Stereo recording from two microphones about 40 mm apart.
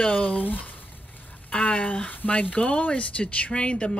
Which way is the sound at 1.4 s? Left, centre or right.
Left.